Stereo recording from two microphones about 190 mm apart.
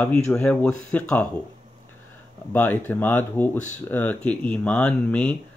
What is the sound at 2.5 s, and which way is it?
Speech, 10° left (ahead or behind).